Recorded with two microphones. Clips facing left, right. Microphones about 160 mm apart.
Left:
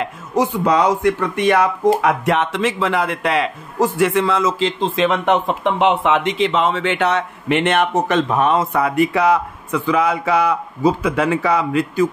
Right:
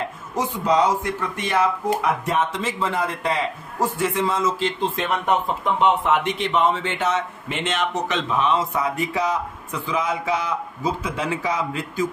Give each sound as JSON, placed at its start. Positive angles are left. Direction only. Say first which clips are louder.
{"t": 0.0, "sound": "a man's voice", "louder": "left 7 dB", "side_deg": 70}